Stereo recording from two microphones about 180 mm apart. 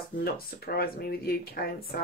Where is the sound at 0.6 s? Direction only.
60° left (ahead or behind).